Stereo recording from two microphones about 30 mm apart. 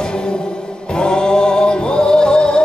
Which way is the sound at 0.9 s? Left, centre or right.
Left.